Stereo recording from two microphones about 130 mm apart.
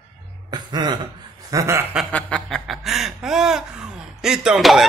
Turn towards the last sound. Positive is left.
turn(degrees=0)  # may be behind; listen again after turning